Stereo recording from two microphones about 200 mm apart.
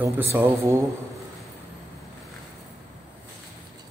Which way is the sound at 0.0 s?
10° right (ahead or behind).